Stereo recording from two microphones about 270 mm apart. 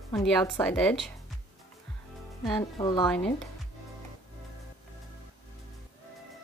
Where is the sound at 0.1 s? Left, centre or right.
Centre.